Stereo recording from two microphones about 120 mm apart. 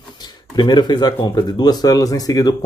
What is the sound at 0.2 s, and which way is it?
Speech, 35° left (ahead or behind).